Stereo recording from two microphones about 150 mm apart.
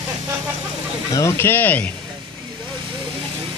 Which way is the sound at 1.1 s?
20° left (ahead or behind).